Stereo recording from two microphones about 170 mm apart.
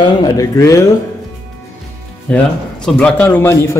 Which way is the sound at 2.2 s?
5° left (ahead or behind).